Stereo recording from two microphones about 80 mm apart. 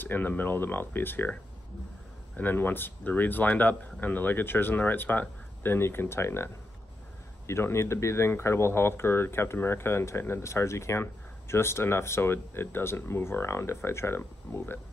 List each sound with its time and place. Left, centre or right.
0.0 s speech: left